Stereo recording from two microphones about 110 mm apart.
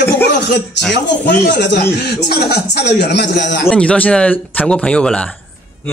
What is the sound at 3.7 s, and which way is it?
Speech, 10° left (ahead or behind).